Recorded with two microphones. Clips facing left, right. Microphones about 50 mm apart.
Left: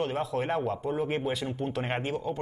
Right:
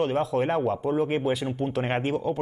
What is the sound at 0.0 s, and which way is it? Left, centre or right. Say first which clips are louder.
Speech: right 5 dB; centre.